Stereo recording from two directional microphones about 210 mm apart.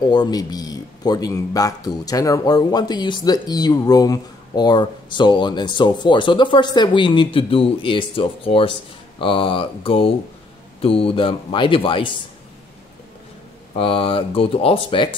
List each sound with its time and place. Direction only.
0.1 s a man's voice: 20° left (ahead or behind)
13.7 s a man's voice: 25° left (ahead or behind)